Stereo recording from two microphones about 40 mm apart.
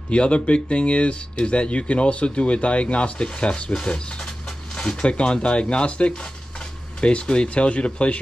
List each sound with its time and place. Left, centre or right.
0.1 s speech: left
5.0 s speech: left